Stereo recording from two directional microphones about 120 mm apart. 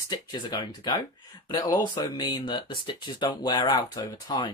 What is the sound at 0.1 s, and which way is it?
Speech, 30° left (ahead or behind).